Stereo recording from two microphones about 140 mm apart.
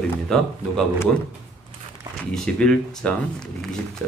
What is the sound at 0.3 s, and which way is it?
Speech, 5° left (ahead or behind).